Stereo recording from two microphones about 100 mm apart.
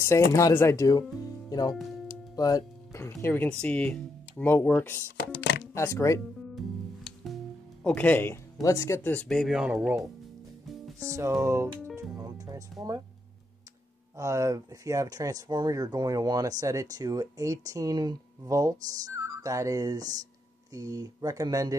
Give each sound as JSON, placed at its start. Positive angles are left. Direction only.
{"t": 0.0, "sound": "speech", "side_deg": 30}
{"t": 3.4, "sound": "speech", "side_deg": 10}
{"t": 7.8, "sound": "speech", "side_deg": 15}
{"t": 8.6, "sound": "speech", "side_deg": 30}
{"t": 9.1, "sound": "speech", "side_deg": 15}
{"t": 9.4, "sound": "speech", "side_deg": -5}
{"t": 9.7, "sound": "speech", "side_deg": -20}
{"t": 11.0, "sound": "speech", "side_deg": -30}
{"t": 12.0, "sound": "music", "side_deg": -35}
{"t": 14.1, "sound": "speech", "side_deg": -35}